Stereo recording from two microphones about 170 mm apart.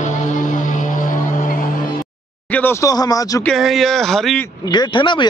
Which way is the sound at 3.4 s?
Centre (ahead or behind).